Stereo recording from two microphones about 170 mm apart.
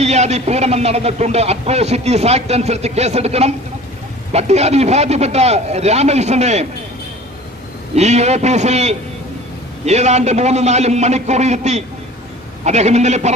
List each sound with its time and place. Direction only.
0.0 s speech: 40° right (ahead or behind)
7.9 s speech: 40° right (ahead or behind)